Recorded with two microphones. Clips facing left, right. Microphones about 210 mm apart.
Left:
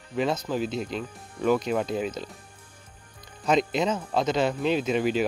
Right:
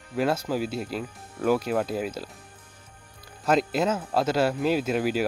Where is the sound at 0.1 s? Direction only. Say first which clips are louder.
Right 1 dB; 5° right (ahead or behind).